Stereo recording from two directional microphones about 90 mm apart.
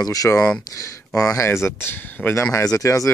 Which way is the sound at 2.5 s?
35° left (ahead or behind).